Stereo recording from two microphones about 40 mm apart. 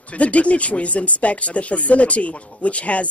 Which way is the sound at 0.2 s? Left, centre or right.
Left.